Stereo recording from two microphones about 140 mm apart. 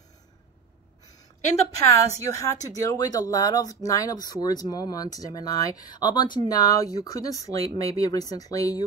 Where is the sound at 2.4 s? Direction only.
25° left (ahead or behind).